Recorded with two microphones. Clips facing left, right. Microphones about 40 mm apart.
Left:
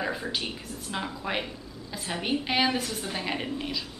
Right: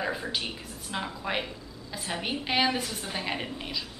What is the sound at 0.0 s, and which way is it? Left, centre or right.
Speech, centre.